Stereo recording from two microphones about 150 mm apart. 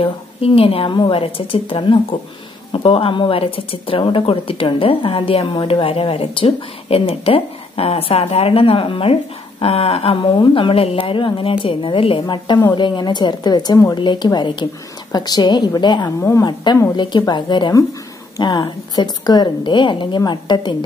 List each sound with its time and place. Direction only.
0.0 s a woman's voice: 40° left (ahead or behind)
16.2 s a woman's voice: 20° left (ahead or behind)
16.4 s a woman's voice: 30° left (ahead or behind)